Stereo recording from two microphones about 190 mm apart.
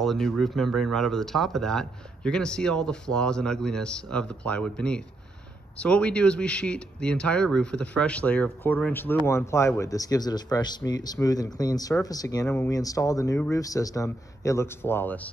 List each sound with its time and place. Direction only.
0.0 s speech: centre (ahead or behind)